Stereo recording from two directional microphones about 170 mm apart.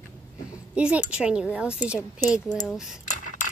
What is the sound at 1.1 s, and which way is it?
A woman's voice, 5° right (ahead or behind).